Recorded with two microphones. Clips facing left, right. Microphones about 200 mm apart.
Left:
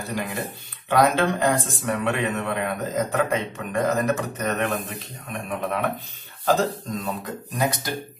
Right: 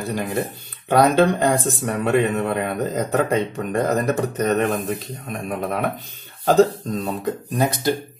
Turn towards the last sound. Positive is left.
turn(degrees=-30)  # may be behind; listen again after turning